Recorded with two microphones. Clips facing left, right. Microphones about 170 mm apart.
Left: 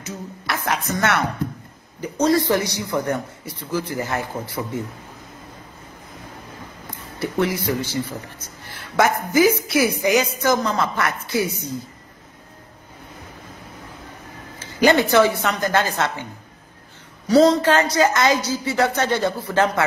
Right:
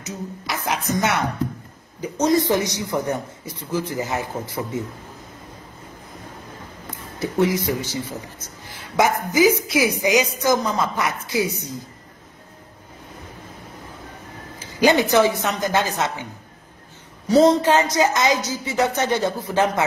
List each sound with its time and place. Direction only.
0.5 s a woman's voice: 15° right (ahead or behind)
7.2 s a woman's voice: 20° right (ahead or behind)
14.8 s a woman's voice: 15° right (ahead or behind)
17.3 s a woman's voice: 20° right (ahead or behind)